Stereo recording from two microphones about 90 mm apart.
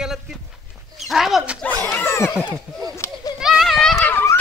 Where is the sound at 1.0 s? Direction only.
5° right (ahead or behind).